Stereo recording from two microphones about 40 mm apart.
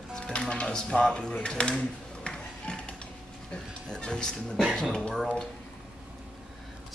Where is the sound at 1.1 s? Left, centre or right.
Left.